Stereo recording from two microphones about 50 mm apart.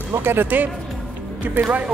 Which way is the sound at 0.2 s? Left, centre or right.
Right.